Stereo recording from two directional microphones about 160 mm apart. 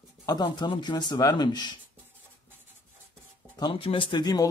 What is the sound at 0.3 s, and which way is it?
Speech, 25° left (ahead or behind).